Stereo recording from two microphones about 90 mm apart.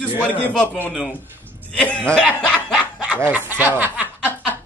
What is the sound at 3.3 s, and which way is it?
Speech, 20° right (ahead or behind).